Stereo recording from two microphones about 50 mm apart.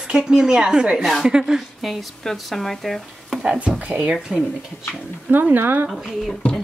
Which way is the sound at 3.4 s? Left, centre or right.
Right.